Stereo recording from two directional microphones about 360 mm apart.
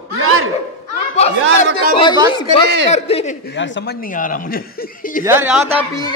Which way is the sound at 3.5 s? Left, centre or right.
Left.